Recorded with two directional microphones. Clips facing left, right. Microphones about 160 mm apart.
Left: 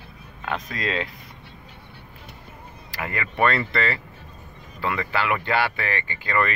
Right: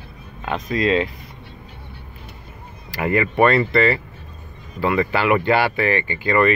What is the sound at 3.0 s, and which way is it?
Speech, 20° right (ahead or behind).